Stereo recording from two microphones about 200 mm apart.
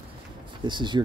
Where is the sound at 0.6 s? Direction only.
25° right (ahead or behind).